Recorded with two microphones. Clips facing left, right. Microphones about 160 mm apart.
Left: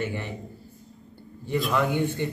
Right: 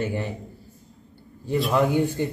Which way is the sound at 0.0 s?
40° right (ahead or behind).